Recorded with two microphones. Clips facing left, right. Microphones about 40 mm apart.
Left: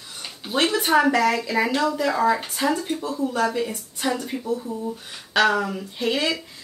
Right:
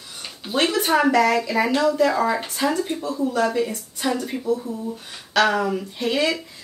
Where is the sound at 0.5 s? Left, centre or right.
Centre.